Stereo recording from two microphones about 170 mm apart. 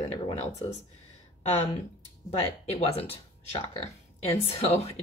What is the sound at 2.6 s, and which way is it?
Speech, 35° left (ahead or behind).